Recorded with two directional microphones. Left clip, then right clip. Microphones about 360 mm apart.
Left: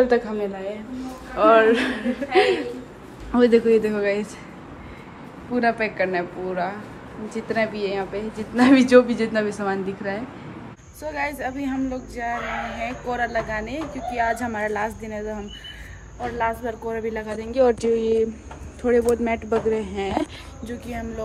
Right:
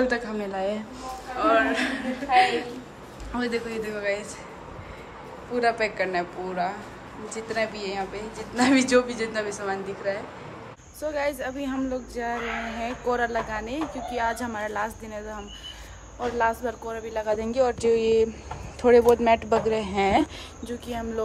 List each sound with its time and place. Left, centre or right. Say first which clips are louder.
0.0 s speech: left 6 dB; centre
5.5 s speech: left 2 dB; centre
16.3 s speech: even; centre
17.6 s speech: left 7 dB; centre
17.8 s a sound: even; right
18.8 s speech: right 2 dB; centre